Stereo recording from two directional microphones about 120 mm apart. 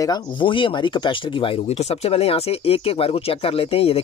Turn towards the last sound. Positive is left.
turn(degrees=55)  # may be behind; listen again after turning